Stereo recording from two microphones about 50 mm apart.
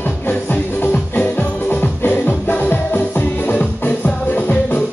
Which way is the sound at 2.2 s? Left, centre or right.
Left.